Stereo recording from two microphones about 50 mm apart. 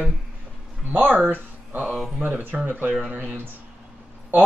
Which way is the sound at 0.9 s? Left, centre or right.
Right.